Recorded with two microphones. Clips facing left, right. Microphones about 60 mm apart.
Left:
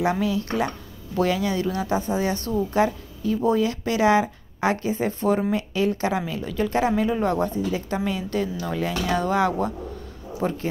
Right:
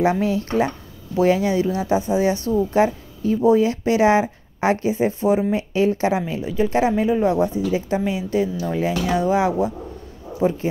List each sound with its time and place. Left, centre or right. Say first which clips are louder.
0.0 s speech: right 4 dB; right
2.5 s a woman's voice: right 2 dB; right; by 10.6 s centre